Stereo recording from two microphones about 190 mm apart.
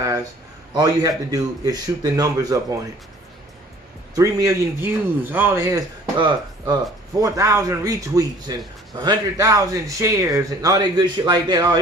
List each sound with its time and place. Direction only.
0.7 s speech: 20° right (ahead or behind)
4.1 s speech: 15° right (ahead or behind)